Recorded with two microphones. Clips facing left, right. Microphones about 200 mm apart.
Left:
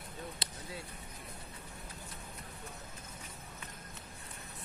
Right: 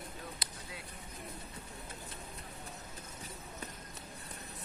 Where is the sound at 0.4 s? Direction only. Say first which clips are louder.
Left 2 dB; 30° left (ahead or behind).